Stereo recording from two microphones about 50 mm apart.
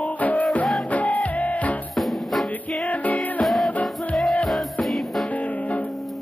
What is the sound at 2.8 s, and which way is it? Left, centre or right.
Music, left.